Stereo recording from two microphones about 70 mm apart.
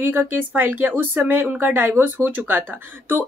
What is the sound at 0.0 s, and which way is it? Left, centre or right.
Speech, right.